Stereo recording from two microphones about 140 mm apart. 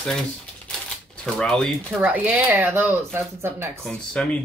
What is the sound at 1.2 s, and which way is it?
Speech, 5° left (ahead or behind).